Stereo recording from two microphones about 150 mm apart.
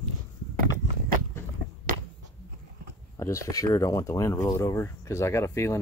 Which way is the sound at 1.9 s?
70° right (ahead or behind).